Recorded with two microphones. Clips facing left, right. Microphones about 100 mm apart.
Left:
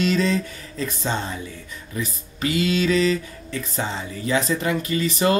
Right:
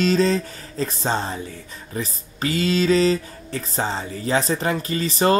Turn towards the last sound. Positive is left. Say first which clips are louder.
# right 1 dB
turn(degrees=-35)  # may be behind; listen again after turning